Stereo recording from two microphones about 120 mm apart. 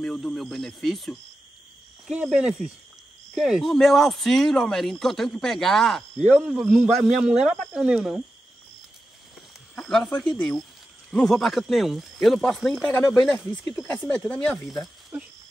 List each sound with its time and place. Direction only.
0.0 s speech: 5° left (ahead or behind)
9.8 s speech: 5° left (ahead or behind)
12.8 s speech: 15° left (ahead or behind)
13.1 s speech: centre (ahead or behind)
14.7 s speech: centre (ahead or behind)